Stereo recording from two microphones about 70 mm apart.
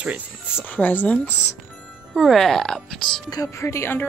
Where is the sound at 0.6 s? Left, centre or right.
Left.